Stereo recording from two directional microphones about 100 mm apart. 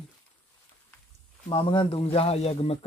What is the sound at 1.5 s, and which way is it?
Speech, 55° left (ahead or behind).